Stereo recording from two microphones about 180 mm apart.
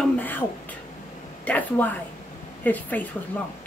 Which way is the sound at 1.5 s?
10° left (ahead or behind).